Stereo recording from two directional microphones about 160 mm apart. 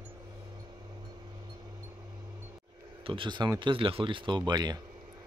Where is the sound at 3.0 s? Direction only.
30° right (ahead or behind).